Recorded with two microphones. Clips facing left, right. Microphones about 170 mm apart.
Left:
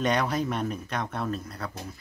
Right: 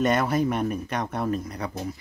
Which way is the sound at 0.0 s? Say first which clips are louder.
Right 4 dB; 5° right (ahead or behind).